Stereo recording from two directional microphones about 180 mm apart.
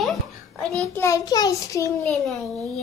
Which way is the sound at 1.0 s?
20° left (ahead or behind).